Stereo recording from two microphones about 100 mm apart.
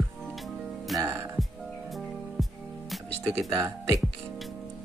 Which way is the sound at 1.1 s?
25° right (ahead or behind).